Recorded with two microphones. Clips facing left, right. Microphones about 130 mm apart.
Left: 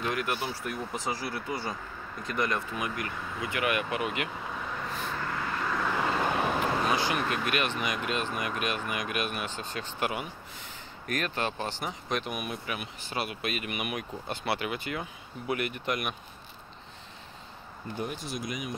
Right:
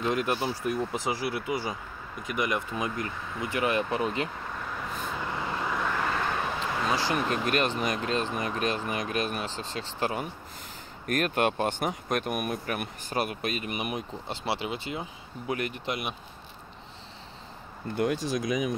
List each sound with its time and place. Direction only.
0.0 s speech: 25° right (ahead or behind)
2.7 s speech: 25° right (ahead or behind)
4.5 s vehicle: centre (ahead or behind)
5.2 s vehicle: 20° right (ahead or behind)
5.8 s vehicle: 5° left (ahead or behind)
6.6 s a sound: 20° left (ahead or behind)
7.1 s speech: 35° right (ahead or behind)
11.1 s speech: 50° right (ahead or behind); by 16.2 s 25° right (ahead or behind)
17.9 s speech: 90° right